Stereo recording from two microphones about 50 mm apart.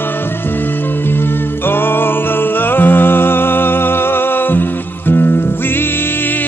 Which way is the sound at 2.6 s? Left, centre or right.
Left.